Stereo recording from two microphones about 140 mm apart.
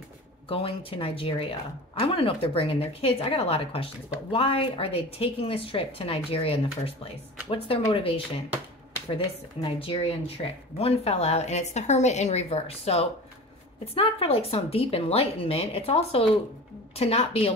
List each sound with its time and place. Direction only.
0.5 s a woman's voice: 40° left (ahead or behind)